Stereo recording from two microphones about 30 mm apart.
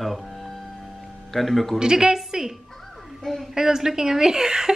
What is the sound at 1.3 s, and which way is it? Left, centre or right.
Speech, centre.